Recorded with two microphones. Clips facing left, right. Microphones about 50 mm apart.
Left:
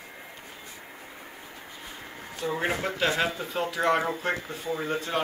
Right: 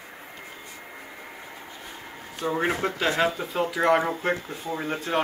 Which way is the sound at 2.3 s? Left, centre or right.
Right.